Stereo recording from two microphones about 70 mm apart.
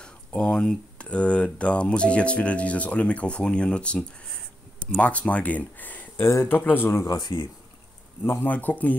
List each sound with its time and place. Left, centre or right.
0.0 s speech: centre
6.2 s speech: left
7.1 s speech: left
8.2 s speech: left